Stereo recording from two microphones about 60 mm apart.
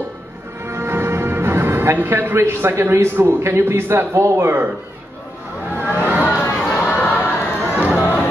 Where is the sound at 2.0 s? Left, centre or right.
Right.